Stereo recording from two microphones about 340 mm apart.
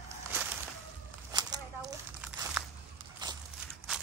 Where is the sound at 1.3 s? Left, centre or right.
Centre.